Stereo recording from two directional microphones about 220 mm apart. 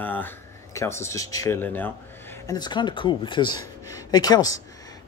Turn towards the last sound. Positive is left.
turn(degrees=15)  # may be behind; listen again after turning